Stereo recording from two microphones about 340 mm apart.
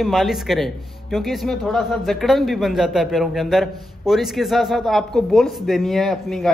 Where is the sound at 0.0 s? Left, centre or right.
Centre.